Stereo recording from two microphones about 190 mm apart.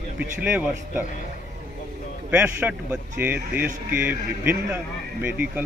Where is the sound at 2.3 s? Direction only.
5° right (ahead or behind).